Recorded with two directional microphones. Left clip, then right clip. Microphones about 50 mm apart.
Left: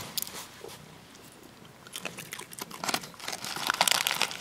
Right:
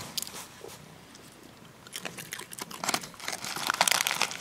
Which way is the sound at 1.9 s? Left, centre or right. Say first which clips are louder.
Even; centre.